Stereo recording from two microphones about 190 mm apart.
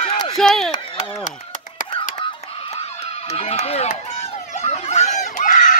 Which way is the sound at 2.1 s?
30° left (ahead or behind).